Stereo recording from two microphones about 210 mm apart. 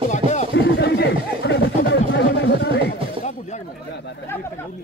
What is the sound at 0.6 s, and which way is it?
Chatter, 50° left (ahead or behind).